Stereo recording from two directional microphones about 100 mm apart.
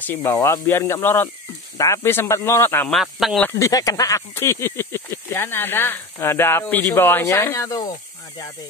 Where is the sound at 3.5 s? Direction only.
30° left (ahead or behind).